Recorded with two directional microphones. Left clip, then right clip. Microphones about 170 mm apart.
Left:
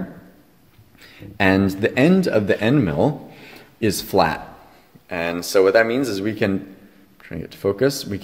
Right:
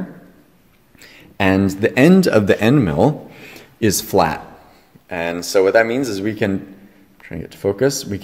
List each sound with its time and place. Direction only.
1.4 s speech: 5° right (ahead or behind)
2.0 s speech: 30° right (ahead or behind); by 8.2 s 5° right (ahead or behind)